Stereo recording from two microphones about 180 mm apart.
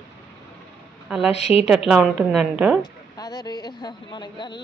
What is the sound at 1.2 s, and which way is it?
Speech, 35° left (ahead or behind).